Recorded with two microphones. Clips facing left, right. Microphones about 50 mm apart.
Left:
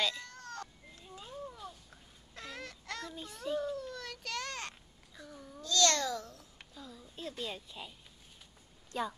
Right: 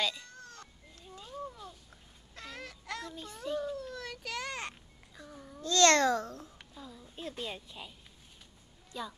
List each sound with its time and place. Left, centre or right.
0.0 s children playing: centre
1.0 s a sound: centre
5.6 s a child's voice: right
6.7 s a sound: centre
7.2 s a woman's voice: centre
8.9 s a woman's voice: left